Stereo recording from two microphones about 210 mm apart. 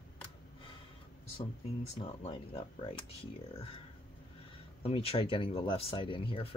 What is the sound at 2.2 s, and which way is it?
Speech, 25° left (ahead or behind).